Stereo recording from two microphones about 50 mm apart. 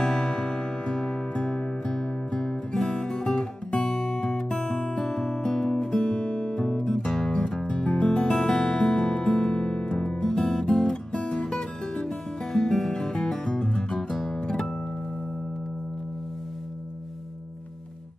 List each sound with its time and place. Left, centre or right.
0.2 s music: centre